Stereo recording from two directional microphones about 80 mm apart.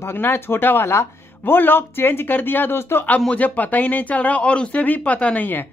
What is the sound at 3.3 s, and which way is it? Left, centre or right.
Speech, centre.